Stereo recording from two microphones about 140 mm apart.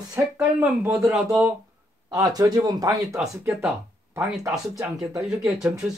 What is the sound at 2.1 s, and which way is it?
Speech, 25° right (ahead or behind).